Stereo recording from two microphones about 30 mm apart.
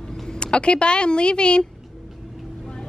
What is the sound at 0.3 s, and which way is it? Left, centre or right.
Speech, left.